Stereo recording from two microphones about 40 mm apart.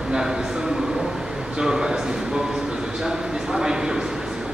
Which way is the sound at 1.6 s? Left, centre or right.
Centre.